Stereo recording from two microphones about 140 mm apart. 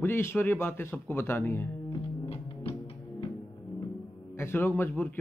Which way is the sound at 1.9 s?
40° left (ahead or behind).